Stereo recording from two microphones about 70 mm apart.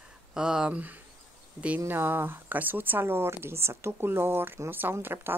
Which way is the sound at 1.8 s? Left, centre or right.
Right.